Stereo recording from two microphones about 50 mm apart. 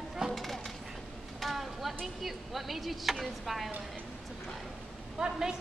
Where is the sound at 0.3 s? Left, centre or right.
Centre.